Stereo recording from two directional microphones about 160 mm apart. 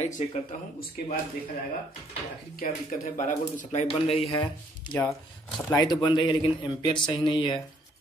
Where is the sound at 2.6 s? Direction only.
60° left (ahead or behind); by 4.5 s 35° left (ahead or behind).